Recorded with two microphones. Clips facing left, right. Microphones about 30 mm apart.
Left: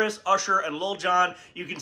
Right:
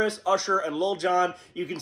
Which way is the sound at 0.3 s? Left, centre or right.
Right.